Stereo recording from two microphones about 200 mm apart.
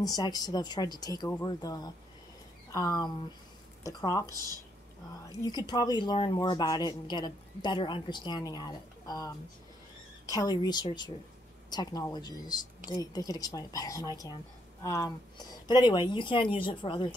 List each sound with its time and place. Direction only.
0.0 s a woman's voice: 20° left (ahead or behind)
5.7 s speech: 20° left (ahead or behind)